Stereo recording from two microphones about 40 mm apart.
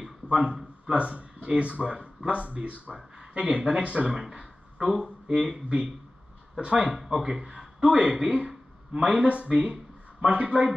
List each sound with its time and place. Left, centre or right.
0.3 s a sound: right
0.9 s speech: right
4.3 s speech: centre
5.5 s speech: right
6.9 s a man's voice: centre
9.3 s speech: right